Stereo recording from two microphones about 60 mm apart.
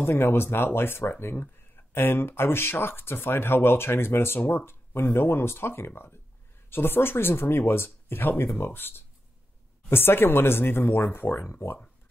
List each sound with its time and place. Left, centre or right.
0.0 s speech: left